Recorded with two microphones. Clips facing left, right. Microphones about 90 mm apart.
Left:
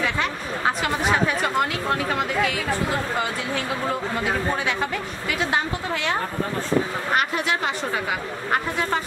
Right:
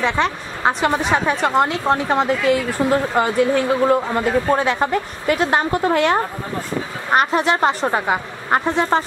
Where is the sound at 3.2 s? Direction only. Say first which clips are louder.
Right 9 dB; 50° right (ahead or behind).